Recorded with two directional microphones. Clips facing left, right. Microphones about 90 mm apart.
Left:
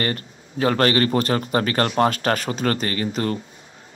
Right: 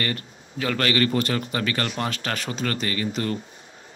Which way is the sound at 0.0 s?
35° left (ahead or behind).